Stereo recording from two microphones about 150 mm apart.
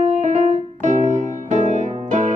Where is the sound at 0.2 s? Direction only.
50° right (ahead or behind).